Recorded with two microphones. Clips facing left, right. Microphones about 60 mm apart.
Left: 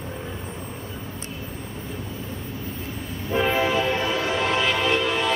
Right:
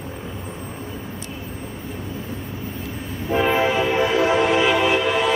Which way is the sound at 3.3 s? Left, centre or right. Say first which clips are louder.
Right 3 dB; centre.